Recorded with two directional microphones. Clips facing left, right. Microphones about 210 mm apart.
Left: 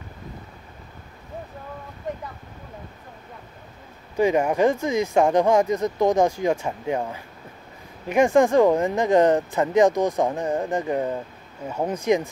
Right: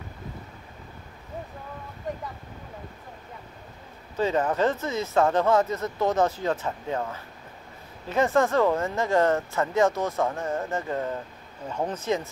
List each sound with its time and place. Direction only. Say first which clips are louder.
4.2 s speech: left 5 dB; 15° left (ahead or behind)